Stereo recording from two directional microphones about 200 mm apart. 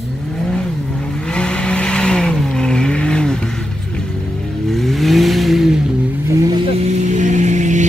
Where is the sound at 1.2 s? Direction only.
5° left (ahead or behind).